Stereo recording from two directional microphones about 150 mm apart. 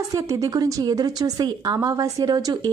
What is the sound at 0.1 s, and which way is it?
Speech, 25° right (ahead or behind).